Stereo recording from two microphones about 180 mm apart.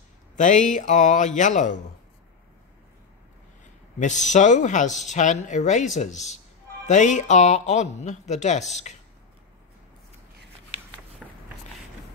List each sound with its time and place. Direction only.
0.4 s speech: 45° left (ahead or behind)
4.0 s speech: 45° left (ahead or behind)
11.2 s a sound: centre (ahead or behind)